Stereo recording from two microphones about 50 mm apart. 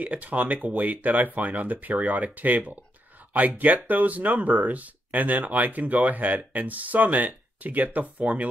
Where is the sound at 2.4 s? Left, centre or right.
Right.